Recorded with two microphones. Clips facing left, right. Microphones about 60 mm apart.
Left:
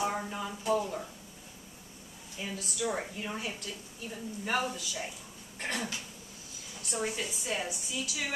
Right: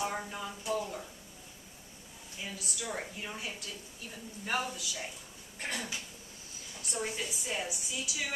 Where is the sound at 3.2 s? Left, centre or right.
Centre.